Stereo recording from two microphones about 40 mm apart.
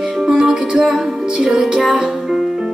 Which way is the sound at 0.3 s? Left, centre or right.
Right.